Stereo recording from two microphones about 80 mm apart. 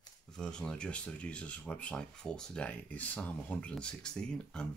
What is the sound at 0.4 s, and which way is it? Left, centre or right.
Speech, centre.